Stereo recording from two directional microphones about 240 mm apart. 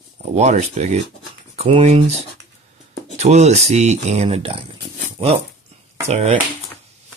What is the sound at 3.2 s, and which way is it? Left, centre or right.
Speech, right.